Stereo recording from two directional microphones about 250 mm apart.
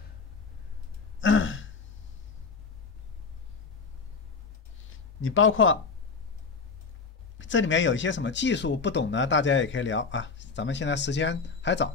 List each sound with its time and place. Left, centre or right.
1.2 s throat clearing: left
4.8 s a sound: left
7.3 s speech: left